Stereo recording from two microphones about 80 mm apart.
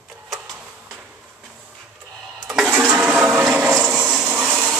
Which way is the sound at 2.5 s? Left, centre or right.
Centre.